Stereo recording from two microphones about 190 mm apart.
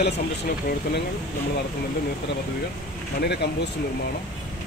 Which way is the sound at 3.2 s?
60° left (ahead or behind).